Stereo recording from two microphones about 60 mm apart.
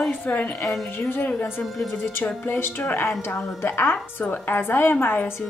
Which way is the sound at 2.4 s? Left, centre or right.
Left.